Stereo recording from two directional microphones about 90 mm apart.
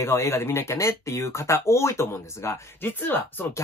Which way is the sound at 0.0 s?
35° left (ahead or behind).